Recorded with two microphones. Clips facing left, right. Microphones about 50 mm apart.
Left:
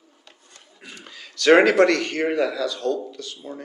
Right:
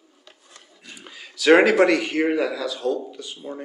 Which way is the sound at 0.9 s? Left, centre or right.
Centre.